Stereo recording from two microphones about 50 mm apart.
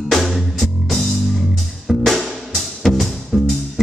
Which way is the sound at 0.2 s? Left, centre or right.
Centre.